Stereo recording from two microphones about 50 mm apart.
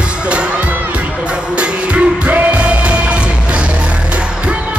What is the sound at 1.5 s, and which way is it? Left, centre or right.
Music, right.